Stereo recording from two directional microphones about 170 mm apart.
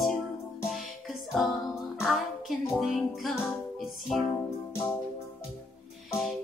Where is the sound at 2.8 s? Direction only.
Centre (ahead or behind).